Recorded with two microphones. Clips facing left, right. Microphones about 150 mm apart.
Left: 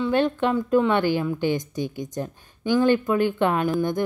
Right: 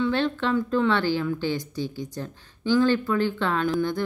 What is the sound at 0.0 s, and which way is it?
Speech, 15° left (ahead or behind).